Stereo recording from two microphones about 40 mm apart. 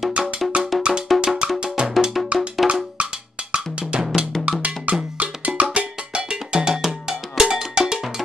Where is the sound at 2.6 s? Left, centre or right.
Centre.